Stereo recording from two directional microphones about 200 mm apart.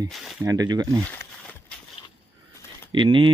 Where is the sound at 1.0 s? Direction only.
5° left (ahead or behind).